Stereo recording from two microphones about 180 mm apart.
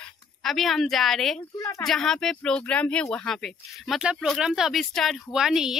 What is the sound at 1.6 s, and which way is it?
Speech, 15° left (ahead or behind).